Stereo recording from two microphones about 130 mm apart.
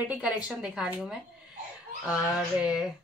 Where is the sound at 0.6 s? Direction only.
5° right (ahead or behind).